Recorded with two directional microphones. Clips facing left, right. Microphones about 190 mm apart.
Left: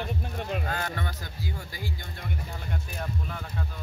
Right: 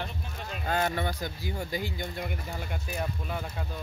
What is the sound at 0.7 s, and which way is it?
Speech, 20° right (ahead or behind).